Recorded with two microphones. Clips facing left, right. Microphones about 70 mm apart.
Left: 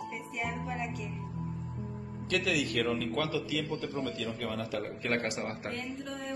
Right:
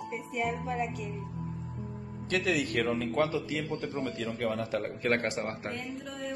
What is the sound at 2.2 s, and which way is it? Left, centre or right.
A man's voice, right.